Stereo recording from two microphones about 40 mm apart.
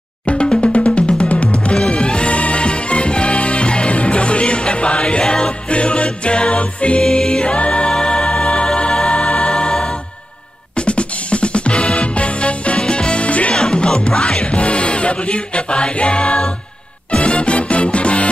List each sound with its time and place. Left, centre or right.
0.3 s music: left
7.0 s music: centre
10.8 s music: left
13.6 s music: left